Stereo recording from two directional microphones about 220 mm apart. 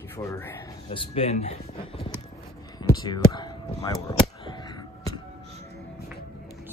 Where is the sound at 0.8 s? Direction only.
25° left (ahead or behind).